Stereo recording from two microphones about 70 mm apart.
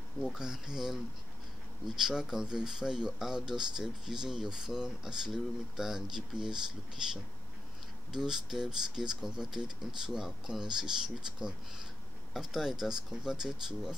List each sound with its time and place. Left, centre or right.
0.2 s speech: centre
8.1 s speech: centre